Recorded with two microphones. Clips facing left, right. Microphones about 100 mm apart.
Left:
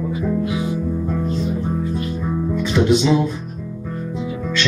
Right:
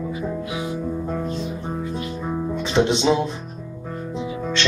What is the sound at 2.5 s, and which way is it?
Music, 25° right (ahead or behind).